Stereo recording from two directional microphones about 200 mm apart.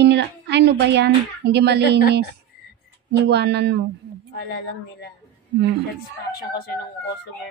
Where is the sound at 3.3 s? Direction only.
55° right (ahead or behind).